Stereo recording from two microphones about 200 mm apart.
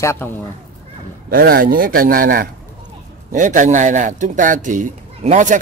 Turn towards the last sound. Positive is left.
turn(degrees=-40)  # may be behind; listen again after turning